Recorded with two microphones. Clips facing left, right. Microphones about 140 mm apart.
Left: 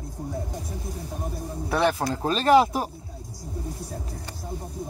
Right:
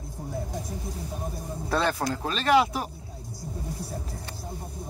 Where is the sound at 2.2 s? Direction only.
40° left (ahead or behind).